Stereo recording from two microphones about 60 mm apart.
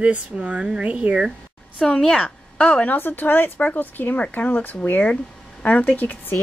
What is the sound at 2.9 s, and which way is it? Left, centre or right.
A woman's voice, left.